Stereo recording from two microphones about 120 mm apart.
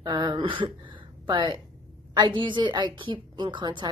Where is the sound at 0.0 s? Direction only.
35° right (ahead or behind).